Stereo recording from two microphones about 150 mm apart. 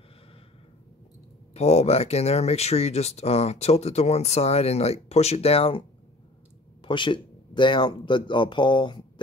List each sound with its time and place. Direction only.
1.5 s speech: 45° left (ahead or behind)